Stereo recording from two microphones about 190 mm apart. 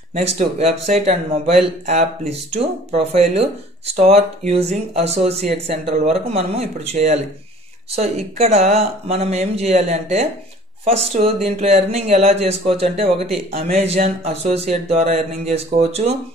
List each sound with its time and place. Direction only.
0.1 s speech: 35° right (ahead or behind)